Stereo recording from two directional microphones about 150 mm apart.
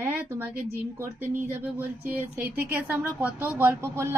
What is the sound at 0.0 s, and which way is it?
A woman's voice, 15° right (ahead or behind).